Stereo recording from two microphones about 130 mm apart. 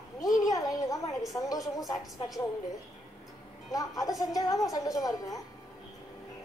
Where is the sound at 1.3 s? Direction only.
25° left (ahead or behind).